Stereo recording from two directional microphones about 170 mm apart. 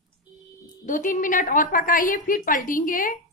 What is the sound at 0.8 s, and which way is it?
A woman's voice, 50° left (ahead or behind).